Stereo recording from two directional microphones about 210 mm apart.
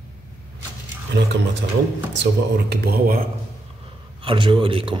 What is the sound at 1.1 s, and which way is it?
A man's voice, 55° right (ahead or behind).